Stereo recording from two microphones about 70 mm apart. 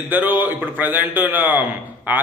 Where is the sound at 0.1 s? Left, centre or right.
Right.